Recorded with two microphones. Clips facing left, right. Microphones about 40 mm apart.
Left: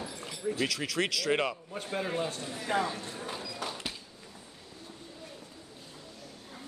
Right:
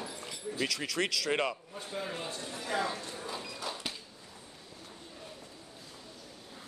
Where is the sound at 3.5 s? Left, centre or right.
Left.